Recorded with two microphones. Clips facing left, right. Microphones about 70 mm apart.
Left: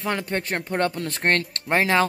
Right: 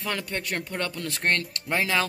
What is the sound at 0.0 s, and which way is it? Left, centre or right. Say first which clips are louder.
Speech: left 5 dB; left.